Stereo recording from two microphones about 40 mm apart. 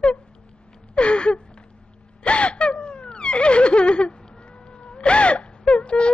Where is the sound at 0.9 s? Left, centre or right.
Left.